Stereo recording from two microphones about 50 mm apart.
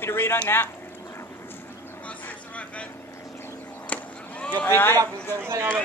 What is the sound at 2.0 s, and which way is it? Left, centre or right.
Vehicle, left.